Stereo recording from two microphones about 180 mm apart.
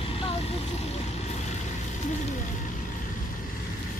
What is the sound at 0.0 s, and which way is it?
Vehicle, 30° left (ahead or behind).